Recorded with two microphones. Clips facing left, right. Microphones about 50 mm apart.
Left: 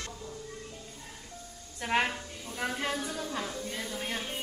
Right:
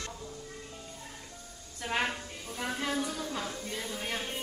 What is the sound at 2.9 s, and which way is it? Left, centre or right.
A woman's voice, centre.